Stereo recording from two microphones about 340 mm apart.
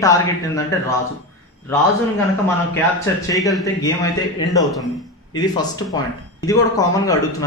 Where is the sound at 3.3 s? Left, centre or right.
Centre.